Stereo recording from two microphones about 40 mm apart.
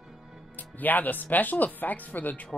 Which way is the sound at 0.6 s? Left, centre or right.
Left.